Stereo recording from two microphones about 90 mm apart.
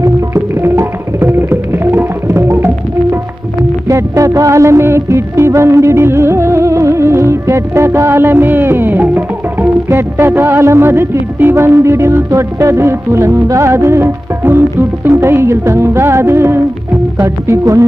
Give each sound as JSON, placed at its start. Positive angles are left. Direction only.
{"t": 0.0, "sound": "music", "side_deg": -30}